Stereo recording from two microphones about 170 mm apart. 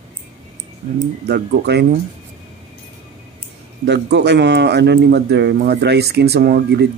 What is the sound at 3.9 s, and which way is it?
Speech, 90° right.